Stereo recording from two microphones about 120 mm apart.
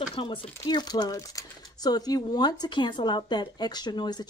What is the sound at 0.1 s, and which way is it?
Speech, 45° left (ahead or behind).